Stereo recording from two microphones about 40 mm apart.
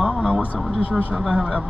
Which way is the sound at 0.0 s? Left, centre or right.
Centre.